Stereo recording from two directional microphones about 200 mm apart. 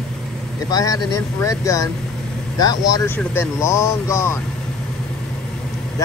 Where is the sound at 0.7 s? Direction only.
20° left (ahead or behind).